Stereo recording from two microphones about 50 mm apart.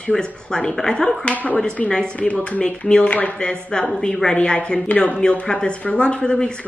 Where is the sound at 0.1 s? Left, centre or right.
Centre.